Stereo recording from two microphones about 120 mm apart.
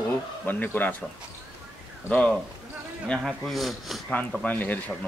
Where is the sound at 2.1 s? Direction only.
10° left (ahead or behind).